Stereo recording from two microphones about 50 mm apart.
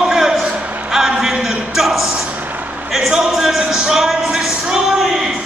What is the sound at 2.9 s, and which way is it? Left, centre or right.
Music, centre.